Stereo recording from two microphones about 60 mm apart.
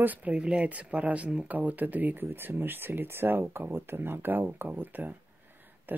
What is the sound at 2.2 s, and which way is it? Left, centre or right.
Speech, right.